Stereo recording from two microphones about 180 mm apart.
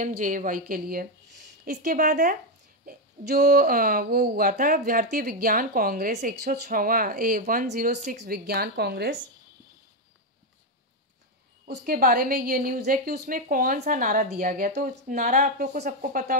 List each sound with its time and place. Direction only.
0.0 s a woman's voice: 45° right (ahead or behind); by 9.1 s 65° right (ahead or behind)
11.6 s a woman's voice: 55° right (ahead or behind)